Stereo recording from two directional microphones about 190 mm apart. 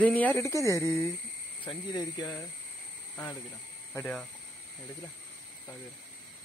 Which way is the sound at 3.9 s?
5° left (ahead or behind).